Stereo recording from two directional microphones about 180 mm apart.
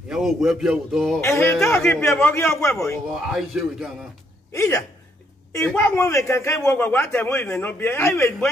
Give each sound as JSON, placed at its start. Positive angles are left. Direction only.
{"t": 0.1, "sound": "a man's voice", "side_deg": 0}
{"t": 1.2, "sound": "a man's voice", "side_deg": 15}
{"t": 3.2, "sound": "a man's voice", "side_deg": 0}
{"t": 4.5, "sound": "a man's voice", "side_deg": 15}